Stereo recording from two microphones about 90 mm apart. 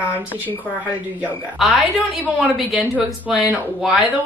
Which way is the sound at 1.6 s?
Centre (ahead or behind).